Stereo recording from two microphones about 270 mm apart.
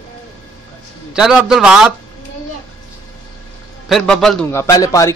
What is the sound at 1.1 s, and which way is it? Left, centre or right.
Speech, centre.